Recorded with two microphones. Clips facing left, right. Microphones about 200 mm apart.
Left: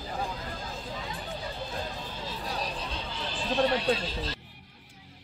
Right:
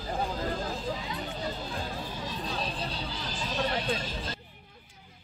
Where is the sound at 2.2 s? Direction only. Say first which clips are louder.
Left 1 dB; 25° right (ahead or behind); by 3.7 s 40° right (ahead or behind).